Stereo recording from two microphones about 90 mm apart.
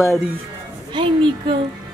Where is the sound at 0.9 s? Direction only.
65° right (ahead or behind).